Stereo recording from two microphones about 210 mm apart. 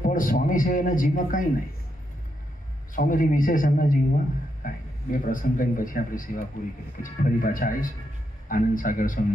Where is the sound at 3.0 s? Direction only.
40° left (ahead or behind).